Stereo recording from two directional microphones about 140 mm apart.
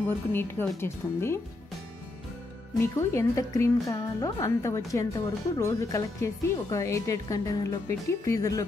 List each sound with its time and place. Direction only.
0.3 s speech: 15° left (ahead or behind)
2.8 s a woman's voice: 20° left (ahead or behind)